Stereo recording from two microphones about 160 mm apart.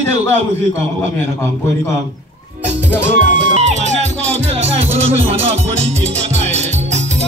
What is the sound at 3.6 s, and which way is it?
Music, 45° right (ahead or behind).